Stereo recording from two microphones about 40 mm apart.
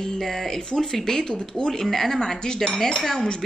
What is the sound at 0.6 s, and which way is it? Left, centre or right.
Speech, left.